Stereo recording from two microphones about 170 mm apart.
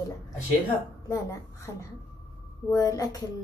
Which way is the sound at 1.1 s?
20° left (ahead or behind).